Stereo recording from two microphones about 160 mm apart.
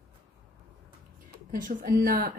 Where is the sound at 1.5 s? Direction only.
60° right (ahead or behind).